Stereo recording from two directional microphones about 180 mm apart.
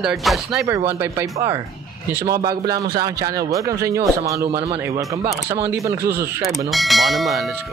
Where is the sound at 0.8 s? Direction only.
10° right (ahead or behind).